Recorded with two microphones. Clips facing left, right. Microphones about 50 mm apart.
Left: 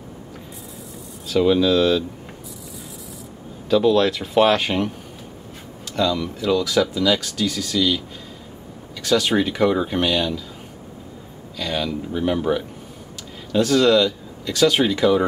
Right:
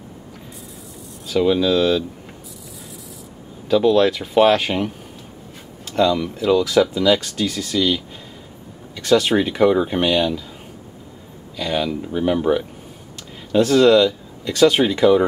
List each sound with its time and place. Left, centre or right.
1.2 s speech: centre
3.6 s speech: centre
11.5 s speech: centre